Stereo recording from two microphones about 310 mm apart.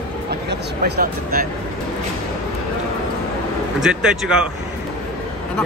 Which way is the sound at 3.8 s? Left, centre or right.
Centre.